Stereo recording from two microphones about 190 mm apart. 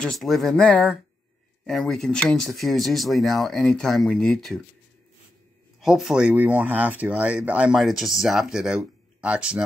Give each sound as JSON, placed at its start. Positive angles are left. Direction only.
{"t": 0.0, "sound": "speech", "side_deg": 0}
{"t": 5.8, "sound": "speech", "side_deg": 0}